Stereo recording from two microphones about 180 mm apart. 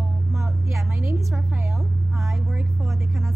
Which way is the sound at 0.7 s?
15° right (ahead or behind).